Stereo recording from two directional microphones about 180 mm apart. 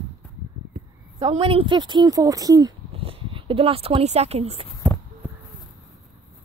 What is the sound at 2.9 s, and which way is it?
Speech, 30° right (ahead or behind).